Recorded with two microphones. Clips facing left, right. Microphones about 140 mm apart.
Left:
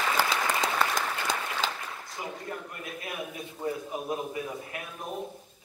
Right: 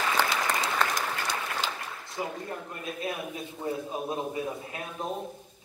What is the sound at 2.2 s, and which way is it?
A man's voice, 25° right (ahead or behind).